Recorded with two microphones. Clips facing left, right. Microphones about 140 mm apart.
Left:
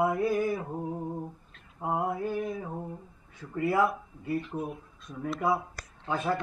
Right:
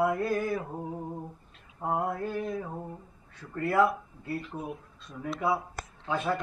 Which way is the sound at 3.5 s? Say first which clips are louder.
Left 2 dB; 5° left (ahead or behind).